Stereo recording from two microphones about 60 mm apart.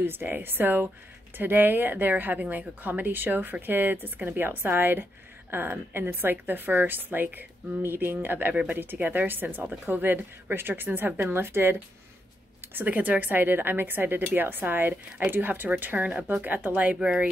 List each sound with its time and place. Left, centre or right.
0.0 s a woman's voice: right
12.7 s a woman's voice: right